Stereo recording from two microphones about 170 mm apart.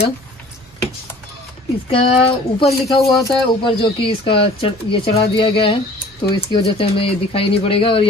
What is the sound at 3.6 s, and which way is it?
Speech, 30° left (ahead or behind).